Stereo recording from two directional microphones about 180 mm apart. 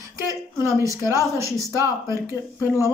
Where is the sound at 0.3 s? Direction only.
15° right (ahead or behind).